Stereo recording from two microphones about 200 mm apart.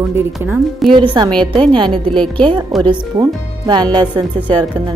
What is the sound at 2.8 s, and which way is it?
Speech, 20° right (ahead or behind).